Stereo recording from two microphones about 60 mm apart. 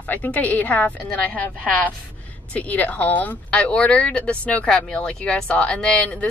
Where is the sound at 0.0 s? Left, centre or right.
Left.